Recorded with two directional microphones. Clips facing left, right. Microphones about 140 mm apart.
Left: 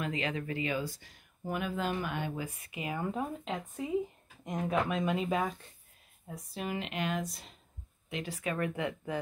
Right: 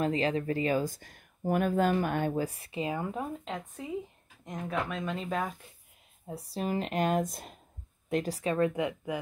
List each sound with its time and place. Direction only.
0.0 s speech: 35° right (ahead or behind)
3.0 s speech: centre (ahead or behind)
6.2 s speech: 35° right (ahead or behind); by 7.5 s 50° right (ahead or behind)
8.1 s speech: 40° right (ahead or behind); by 9.2 s 15° right (ahead or behind)